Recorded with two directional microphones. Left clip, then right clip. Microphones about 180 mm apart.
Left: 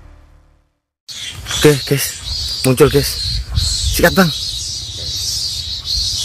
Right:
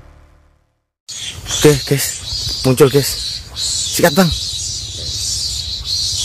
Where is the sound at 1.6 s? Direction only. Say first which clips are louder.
Even; centre (ahead or behind).